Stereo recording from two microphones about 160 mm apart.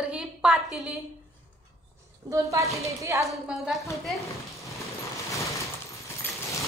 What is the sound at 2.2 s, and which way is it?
A woman's voice, 20° right (ahead or behind).